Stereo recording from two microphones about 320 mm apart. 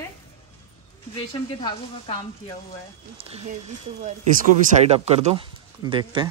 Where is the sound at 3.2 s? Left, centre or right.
Centre.